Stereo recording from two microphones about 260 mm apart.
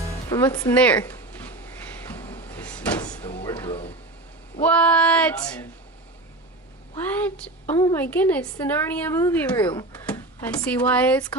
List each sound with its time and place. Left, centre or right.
0.3 s a sound: centre
4.6 s female singing: centre
7.2 s a woman's voice: centre
9.6 s a woman's voice: centre
10.0 s speech: centre